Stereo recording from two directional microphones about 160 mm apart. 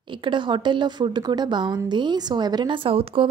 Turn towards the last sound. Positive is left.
turn(degrees=-35)  # may be behind; listen again after turning